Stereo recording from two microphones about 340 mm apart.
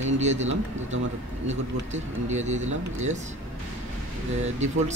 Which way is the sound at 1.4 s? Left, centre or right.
Centre.